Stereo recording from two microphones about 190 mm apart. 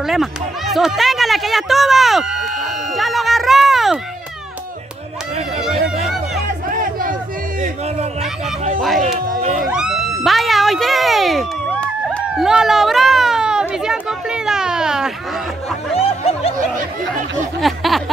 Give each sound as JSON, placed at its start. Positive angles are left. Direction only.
{"t": 0.0, "sound": "speech", "side_deg": 0}
{"t": 6.7, "sound": "a sound", "side_deg": -45}
{"t": 9.4, "sound": "speech", "side_deg": -35}
{"t": 9.7, "sound": "speech", "side_deg": -5}
{"t": 15.9, "sound": "music", "side_deg": 30}
{"t": 17.6, "sound": "speech", "side_deg": 0}